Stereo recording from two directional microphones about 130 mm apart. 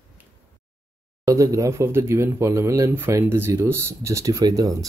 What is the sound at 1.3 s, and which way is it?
Speech, 25° right (ahead or behind).